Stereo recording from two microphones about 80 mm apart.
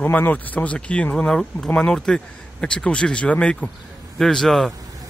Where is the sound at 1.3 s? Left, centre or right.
Centre.